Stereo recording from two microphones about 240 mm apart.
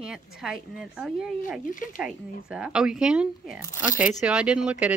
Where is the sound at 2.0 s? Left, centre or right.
Centre.